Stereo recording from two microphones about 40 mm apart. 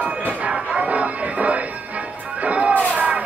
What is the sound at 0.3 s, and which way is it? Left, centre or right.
Music, right.